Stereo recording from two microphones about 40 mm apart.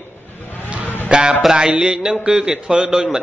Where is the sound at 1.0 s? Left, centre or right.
Right.